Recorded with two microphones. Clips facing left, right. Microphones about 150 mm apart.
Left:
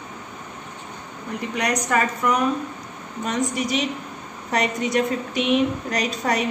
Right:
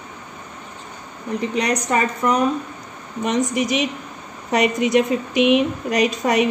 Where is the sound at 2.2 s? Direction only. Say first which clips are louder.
Right 3 dB; 30° right (ahead or behind).